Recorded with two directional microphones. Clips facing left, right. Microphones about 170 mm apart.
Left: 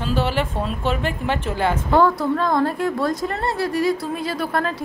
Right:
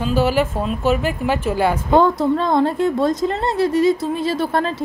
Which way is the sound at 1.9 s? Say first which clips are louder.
Right 2 dB; 20° right (ahead or behind).